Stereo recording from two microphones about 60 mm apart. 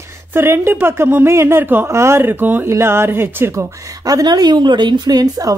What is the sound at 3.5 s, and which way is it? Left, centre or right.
A woman's voice, right.